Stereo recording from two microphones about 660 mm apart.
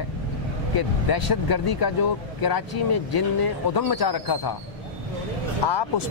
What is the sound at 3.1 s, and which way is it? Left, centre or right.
Speech, left.